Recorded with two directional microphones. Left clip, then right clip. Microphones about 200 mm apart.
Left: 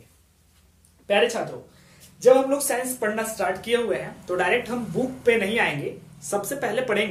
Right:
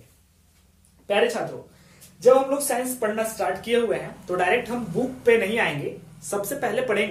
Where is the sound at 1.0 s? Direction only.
10° left (ahead or behind).